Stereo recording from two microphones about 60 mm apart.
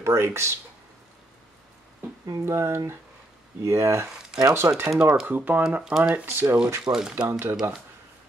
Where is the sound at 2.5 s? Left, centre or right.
Right.